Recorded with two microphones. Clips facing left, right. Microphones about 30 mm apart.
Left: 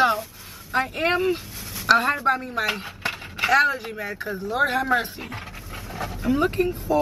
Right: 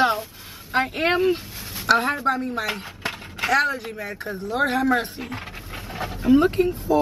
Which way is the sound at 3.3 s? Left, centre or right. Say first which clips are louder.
Left 2 dB; centre.